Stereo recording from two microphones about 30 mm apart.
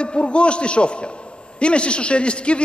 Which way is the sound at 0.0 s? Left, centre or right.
Left.